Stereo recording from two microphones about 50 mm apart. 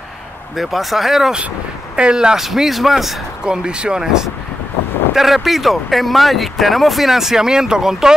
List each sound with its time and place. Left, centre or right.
0.6 s speech: centre
2.0 s speech: centre
3.4 s speech: centre